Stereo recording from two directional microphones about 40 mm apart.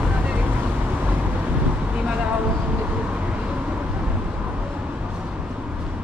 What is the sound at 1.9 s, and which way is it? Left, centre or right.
Vehicle, right.